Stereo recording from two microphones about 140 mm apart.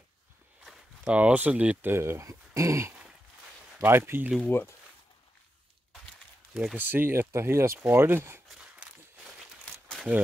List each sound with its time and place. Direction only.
0.7 s speech: 10° right (ahead or behind)
4.5 s speech: 15° left (ahead or behind)
6.5 s speech: centre (ahead or behind)
6.8 s speech: 15° right (ahead or behind)